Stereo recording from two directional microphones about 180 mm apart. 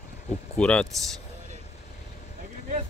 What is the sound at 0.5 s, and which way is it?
Speech, 5° left (ahead or behind).